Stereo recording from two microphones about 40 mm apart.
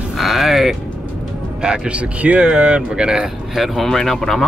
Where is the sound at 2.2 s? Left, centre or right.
Right.